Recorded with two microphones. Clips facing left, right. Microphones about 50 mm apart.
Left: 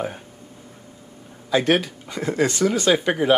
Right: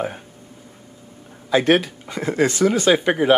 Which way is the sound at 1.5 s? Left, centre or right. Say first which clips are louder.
Right 3 dB; centre.